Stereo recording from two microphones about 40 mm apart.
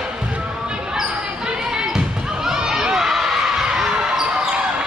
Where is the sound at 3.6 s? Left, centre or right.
Centre.